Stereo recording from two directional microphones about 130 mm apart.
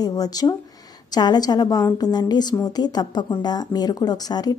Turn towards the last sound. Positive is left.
turn(degrees=30)  # may be behind; listen again after turning